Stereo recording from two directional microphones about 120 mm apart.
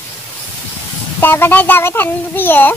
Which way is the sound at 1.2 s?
20° left (ahead or behind).